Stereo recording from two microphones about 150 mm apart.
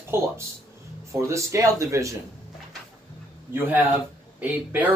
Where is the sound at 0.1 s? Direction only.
15° right (ahead or behind).